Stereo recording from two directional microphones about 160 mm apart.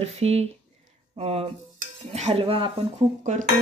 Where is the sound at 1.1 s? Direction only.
40° right (ahead or behind).